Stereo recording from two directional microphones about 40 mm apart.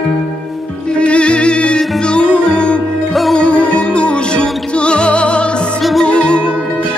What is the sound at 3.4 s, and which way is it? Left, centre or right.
Music, left.